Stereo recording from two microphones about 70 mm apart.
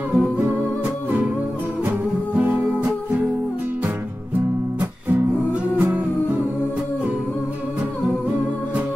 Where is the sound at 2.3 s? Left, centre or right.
Right.